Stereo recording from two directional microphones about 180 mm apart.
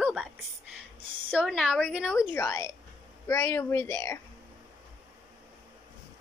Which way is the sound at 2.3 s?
15° left (ahead or behind).